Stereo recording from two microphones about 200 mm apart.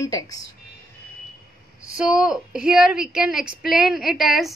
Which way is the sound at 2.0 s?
5° right (ahead or behind).